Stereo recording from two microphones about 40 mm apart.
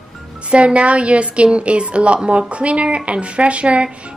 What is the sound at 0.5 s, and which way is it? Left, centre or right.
A woman's voice, right.